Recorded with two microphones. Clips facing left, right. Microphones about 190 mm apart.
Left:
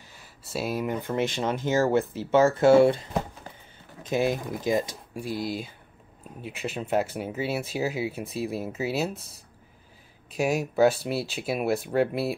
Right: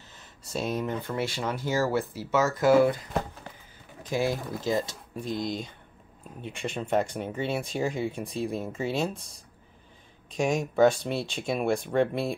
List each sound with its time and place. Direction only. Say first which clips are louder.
0.5 s speech: left 1 dB; 5° left (ahead or behind)